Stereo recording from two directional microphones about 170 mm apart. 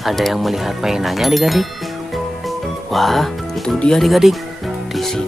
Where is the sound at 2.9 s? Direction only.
Centre (ahead or behind).